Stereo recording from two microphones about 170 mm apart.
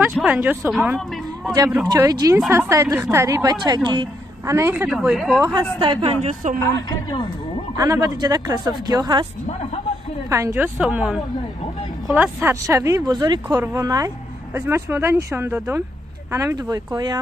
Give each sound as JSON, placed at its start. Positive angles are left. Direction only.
{"t": 0.2, "sound": "a woman's voice", "side_deg": -5}
{"t": 1.9, "sound": "a woman's voice", "side_deg": -20}
{"t": 4.6, "sound": "speech", "side_deg": -15}
{"t": 4.8, "sound": "a woman's voice", "side_deg": -5}
{"t": 5.5, "sound": "a woman's voice", "side_deg": -30}
{"t": 6.4, "sound": "speech", "side_deg": -45}
{"t": 6.9, "sound": "a man's voice", "side_deg": 25}
{"t": 7.7, "sound": "a woman's voice", "side_deg": -20}
{"t": 10.3, "sound": "a woman's voice", "side_deg": -15}